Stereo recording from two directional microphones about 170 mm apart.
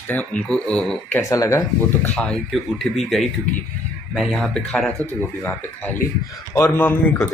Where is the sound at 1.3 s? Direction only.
20° left (ahead or behind).